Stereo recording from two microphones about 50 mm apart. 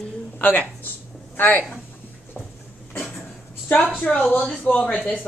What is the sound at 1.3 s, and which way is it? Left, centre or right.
Speech, left.